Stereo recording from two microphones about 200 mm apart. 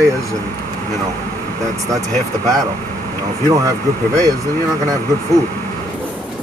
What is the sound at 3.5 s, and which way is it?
Speech, 15° right (ahead or behind).